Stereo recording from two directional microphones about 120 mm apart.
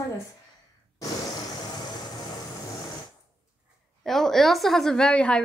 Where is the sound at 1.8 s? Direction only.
35° left (ahead or behind).